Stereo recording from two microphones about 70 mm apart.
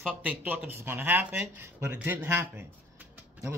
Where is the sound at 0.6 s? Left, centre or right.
Right.